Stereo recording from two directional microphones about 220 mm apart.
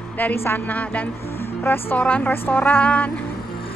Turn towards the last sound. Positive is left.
turn(degrees=5)  # may be behind; listen again after turning